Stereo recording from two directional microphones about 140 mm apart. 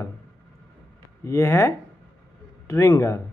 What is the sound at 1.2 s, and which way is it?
Speech, 20° left (ahead or behind).